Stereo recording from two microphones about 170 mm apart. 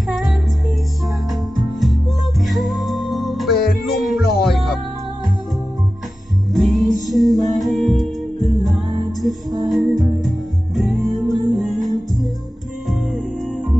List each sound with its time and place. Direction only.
1.3 s music: centre (ahead or behind)
3.9 s music: 65° left (ahead or behind)
4.5 s music: centre (ahead or behind)
6.5 s music: centre (ahead or behind)